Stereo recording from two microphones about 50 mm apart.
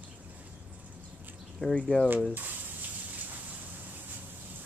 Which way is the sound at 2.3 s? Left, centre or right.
Right.